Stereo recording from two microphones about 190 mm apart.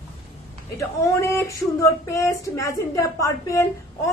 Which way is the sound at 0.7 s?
15° left (ahead or behind).